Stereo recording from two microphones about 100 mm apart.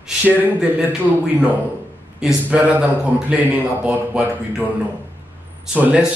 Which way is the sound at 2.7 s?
15° right (ahead or behind).